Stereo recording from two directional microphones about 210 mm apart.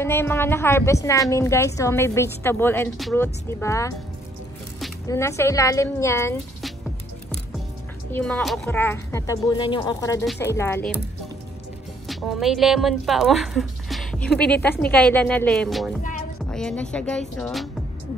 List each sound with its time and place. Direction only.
0.0 s a woman's voice: 10° left (ahead or behind)
5.0 s a woman's voice: 15° left (ahead or behind)
8.1 s a woman's voice: 5° left (ahead or behind)
12.1 s speech: centre (ahead or behind)
16.0 s music: 35° left (ahead or behind)
16.4 s speech: 5° left (ahead or behind)